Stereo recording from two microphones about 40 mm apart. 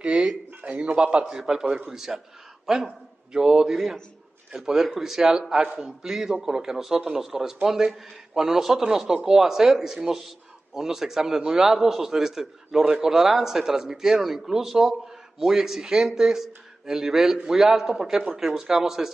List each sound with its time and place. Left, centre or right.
0.0 s a man's voice: right
1.2 s a man's voice: centre